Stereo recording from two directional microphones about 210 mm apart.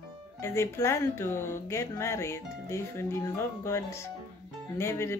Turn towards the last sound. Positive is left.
turn(degrees=10)  # may be behind; listen again after turning